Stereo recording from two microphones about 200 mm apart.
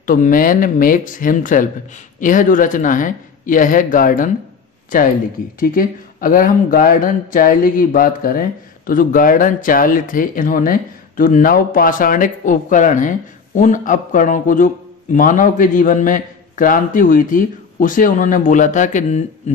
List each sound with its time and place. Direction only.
0.0 s a man's voice: 45° left (ahead or behind)
5.6 s a man's voice: 45° left (ahead or behind)